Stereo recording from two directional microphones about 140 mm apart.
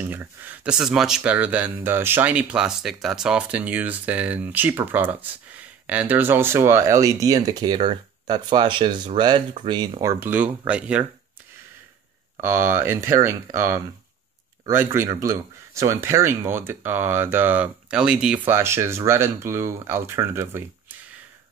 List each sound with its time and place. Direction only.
0.0 s speech: 15° right (ahead or behind); by 10.1 s 30° right (ahead or behind)
10.2 s speech: 15° right (ahead or behind)
12.4 s speech: 20° right (ahead or behind)
18.5 s speech: 20° right (ahead or behind)